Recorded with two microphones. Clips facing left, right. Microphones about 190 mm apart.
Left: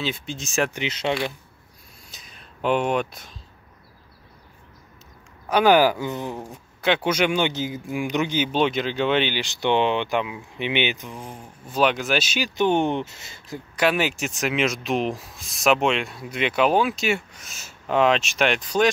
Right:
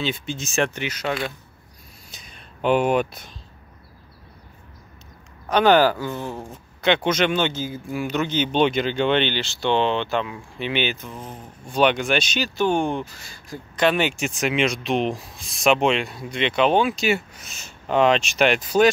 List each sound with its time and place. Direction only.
0.0 s speech: centre (ahead or behind)
0.7 s speech: 25° left (ahead or behind)
2.0 s a sound: centre (ahead or behind)
5.5 s speech: 10° left (ahead or behind)
6.4 s speech: 5° left (ahead or behind)
12.5 s speech: 20° left (ahead or behind)
13.7 s speech: 5° left (ahead or behind)